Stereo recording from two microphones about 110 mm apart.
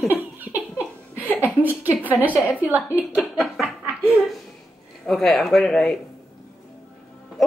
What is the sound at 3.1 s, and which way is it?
Snicker, 5° right (ahead or behind).